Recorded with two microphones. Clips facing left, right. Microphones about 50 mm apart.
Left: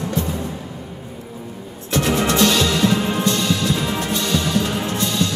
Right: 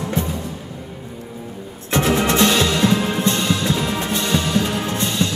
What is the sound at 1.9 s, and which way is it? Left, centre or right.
Music, right.